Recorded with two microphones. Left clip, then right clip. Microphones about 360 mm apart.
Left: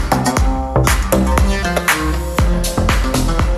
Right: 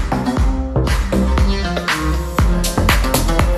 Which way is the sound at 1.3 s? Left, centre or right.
Centre.